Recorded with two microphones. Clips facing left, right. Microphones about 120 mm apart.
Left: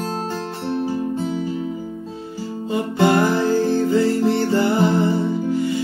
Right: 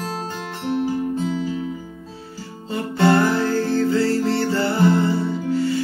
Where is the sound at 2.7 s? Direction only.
15° left (ahead or behind).